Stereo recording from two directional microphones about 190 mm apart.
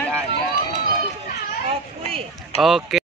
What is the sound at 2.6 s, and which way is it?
Speech, centre (ahead or behind).